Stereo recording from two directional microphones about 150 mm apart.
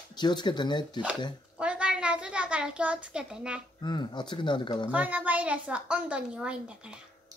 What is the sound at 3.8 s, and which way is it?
Speech, 30° left (ahead or behind).